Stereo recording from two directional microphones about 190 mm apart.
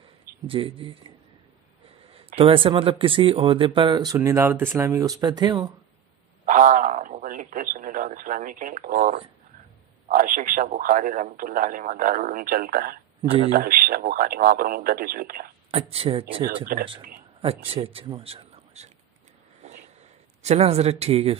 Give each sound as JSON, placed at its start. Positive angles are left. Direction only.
{"t": 0.5, "sound": "speech", "side_deg": -25}
{"t": 2.1, "sound": "speech", "side_deg": -30}
{"t": 6.4, "sound": "speech", "side_deg": -40}
{"t": 15.7, "sound": "speech", "side_deg": -30}
{"t": 16.7, "sound": "speech", "side_deg": -45}
{"t": 17.4, "sound": "a man's voice", "side_deg": -30}
{"t": 20.4, "sound": "speech", "side_deg": -35}